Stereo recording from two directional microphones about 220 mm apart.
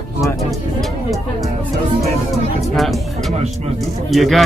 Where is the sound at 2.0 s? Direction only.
Centre (ahead or behind).